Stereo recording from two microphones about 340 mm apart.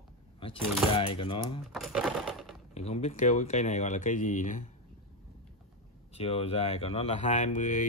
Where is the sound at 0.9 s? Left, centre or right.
Centre.